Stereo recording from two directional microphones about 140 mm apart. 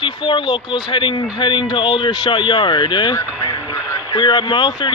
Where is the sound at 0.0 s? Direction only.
35° left (ahead or behind).